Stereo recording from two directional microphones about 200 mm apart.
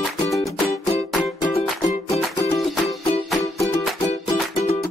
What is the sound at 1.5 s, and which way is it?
Music, 35° left (ahead or behind).